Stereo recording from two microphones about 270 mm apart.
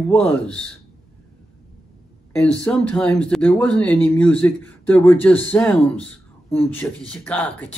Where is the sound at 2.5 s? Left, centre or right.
Centre.